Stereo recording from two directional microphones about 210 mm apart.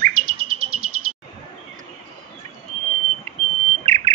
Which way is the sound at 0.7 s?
90° right.